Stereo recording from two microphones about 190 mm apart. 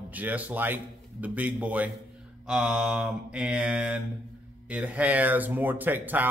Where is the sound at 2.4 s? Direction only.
5° right (ahead or behind).